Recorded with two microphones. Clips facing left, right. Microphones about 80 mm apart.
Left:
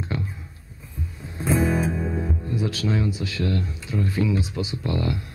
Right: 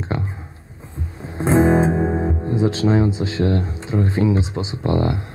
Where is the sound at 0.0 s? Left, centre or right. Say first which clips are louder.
Right 4 dB; right.